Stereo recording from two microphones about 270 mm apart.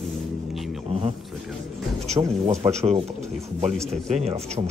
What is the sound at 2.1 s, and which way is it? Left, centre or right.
Speech, right.